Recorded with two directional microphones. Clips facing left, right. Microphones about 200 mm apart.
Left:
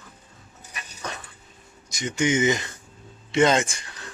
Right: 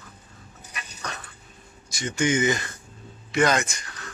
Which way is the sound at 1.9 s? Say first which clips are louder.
Left 1 dB; 20° left (ahead or behind).